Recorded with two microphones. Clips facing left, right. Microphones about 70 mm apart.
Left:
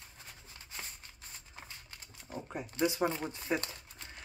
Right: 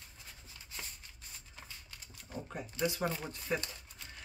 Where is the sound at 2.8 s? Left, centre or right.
Centre.